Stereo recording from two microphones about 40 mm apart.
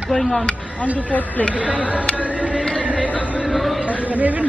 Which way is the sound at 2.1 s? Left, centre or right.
Right.